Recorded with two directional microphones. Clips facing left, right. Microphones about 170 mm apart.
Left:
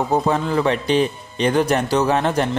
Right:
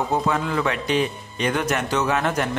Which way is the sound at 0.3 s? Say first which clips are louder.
Left 4 dB; 30° left (ahead or behind).